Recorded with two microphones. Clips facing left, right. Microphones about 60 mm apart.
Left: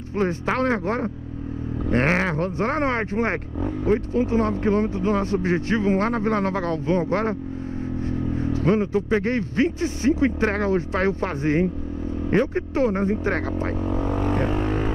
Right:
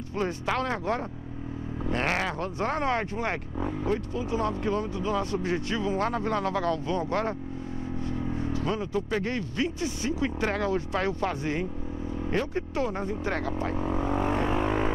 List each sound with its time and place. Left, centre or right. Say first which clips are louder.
0.1 s speech: left 5 dB; left
8.1 s vehicle: left 5 dB; left
9.1 s speech: left 7 dB; left
13.8 s vehicle: left 3 dB; right
14.5 s vehicle: left 2 dB; right